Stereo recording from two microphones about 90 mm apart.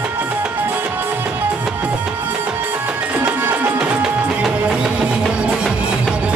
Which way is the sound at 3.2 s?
15° right (ahead or behind).